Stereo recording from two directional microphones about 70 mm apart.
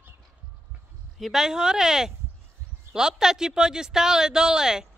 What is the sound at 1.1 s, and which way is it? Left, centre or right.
Speech, centre.